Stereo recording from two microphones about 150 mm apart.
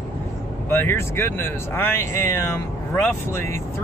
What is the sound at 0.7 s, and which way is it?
Speech, 15° left (ahead or behind).